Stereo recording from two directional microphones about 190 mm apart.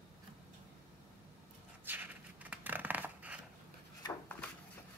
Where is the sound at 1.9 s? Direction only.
10° right (ahead or behind).